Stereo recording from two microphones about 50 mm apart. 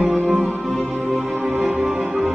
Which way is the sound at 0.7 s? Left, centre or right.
Right.